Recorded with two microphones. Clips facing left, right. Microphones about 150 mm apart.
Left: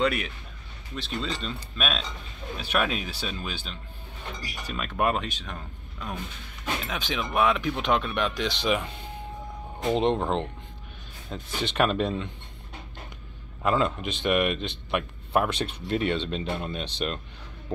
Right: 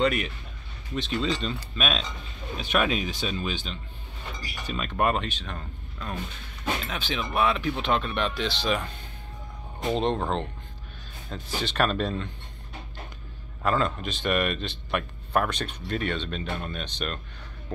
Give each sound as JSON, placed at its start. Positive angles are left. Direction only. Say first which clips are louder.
{"t": 0.0, "sound": "speech", "louder": "right 1 dB", "side_deg": 0}
{"t": 9.9, "sound": "speech", "louder": "left 2 dB", "side_deg": 15}
{"t": 13.6, "sound": "speech", "louder": "left 1 dB", "side_deg": 10}
{"t": 15.5, "sound": "speech", "louder": "left 3 dB", "side_deg": 25}